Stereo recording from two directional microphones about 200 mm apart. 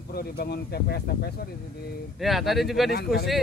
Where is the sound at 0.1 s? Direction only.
50° left (ahead or behind).